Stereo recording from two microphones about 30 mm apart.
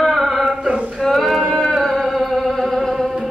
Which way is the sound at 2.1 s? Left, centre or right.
Centre.